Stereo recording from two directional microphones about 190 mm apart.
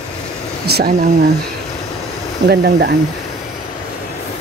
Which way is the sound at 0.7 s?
55° right (ahead or behind).